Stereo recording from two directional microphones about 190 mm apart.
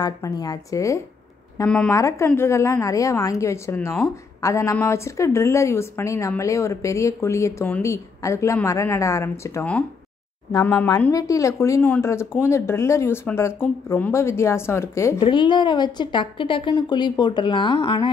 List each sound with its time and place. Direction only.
0.0 s speech: 20° left (ahead or behind)
1.7 s speech: 5° left (ahead or behind)
15.1 s a woman's voice: 25° left (ahead or behind)